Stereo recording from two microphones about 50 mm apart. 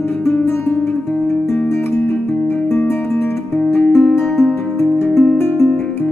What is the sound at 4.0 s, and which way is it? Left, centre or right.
Music, centre.